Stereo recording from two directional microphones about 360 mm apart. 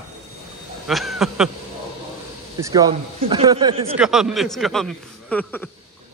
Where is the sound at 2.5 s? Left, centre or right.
Centre.